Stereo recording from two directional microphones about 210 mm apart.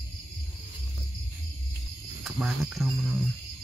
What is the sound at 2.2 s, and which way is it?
Cricket, centre (ahead or behind).